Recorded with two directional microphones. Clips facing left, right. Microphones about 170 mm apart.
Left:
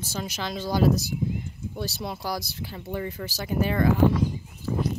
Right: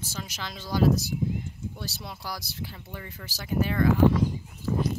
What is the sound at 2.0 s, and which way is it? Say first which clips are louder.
Speech: left 8 dB; 40° left (ahead or behind).